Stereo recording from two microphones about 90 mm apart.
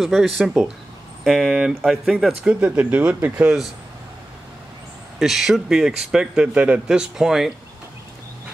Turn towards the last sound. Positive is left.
turn(degrees=-5)  # may be behind; listen again after turning